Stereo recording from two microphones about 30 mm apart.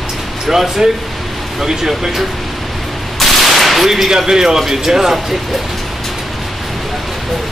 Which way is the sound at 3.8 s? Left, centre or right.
Centre.